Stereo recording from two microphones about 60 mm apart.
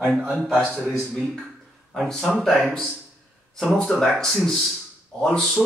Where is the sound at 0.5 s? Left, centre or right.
Right.